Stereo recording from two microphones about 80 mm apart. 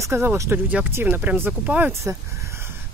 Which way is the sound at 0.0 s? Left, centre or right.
Right.